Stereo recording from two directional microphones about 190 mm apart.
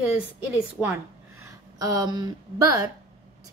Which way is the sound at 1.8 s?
20° right (ahead or behind).